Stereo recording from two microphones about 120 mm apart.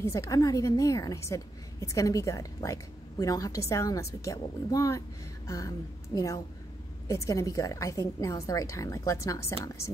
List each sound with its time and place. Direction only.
0.0 s a woman's voice: 25° left (ahead or behind)